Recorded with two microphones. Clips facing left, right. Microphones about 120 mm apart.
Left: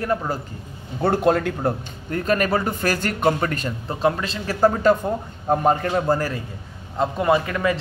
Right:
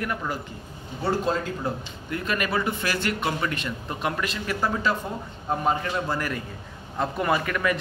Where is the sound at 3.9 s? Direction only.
30° left (ahead or behind).